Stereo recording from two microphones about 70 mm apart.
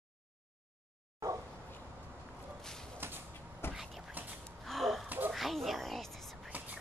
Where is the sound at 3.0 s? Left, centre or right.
Right.